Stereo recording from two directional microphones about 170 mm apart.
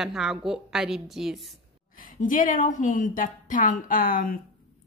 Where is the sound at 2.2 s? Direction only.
50° left (ahead or behind).